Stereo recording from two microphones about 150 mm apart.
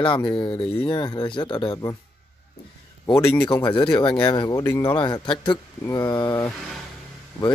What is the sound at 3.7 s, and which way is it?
Speech, 30° left (ahead or behind).